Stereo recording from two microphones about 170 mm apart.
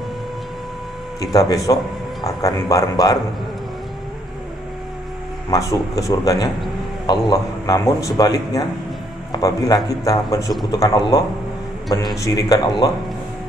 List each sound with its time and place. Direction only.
1.2 s a man's voice: 20° left (ahead or behind)
2.7 s a man's voice: 20° left (ahead or behind)
5.5 s a man's voice: 20° left (ahead or behind)